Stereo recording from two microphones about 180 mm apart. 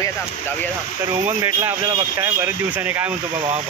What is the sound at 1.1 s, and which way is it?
Speech, 15° right (ahead or behind).